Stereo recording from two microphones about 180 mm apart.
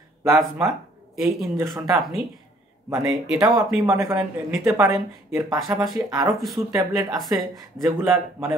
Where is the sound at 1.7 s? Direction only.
25° right (ahead or behind).